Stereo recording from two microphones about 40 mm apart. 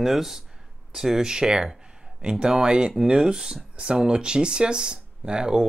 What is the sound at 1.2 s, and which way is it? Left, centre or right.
Speech, centre.